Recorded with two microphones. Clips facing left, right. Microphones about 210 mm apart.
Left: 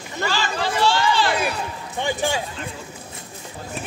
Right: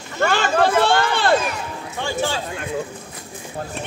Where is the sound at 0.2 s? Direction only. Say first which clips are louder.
Right 7 dB; 55° right (ahead or behind).